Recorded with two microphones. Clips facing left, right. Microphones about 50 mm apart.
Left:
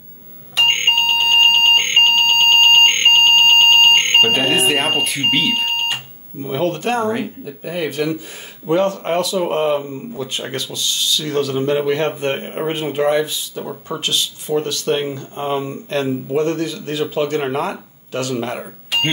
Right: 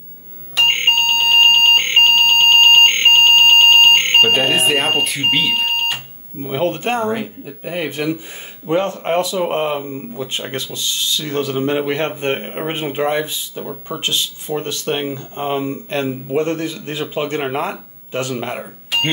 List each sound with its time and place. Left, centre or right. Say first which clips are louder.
0.6 s alarm: right 1 dB; centre
6.4 s speech: even; right
18.6 s a sound: even; centre